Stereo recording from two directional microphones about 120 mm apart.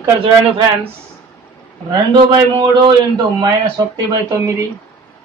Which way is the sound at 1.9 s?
40° right (ahead or behind).